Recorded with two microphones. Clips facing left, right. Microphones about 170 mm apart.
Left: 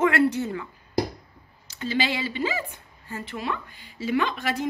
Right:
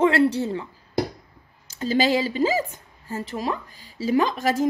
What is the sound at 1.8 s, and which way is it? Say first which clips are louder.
A woman's voice: right 6 dB; 40° right (ahead or behind).